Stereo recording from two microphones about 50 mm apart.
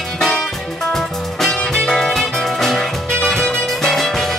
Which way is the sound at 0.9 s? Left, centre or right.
Centre.